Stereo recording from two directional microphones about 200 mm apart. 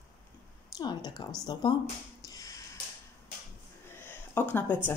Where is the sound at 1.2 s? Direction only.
20° left (ahead or behind).